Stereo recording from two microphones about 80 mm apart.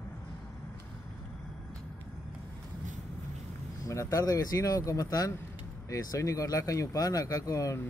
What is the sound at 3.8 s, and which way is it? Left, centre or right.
Speech, left.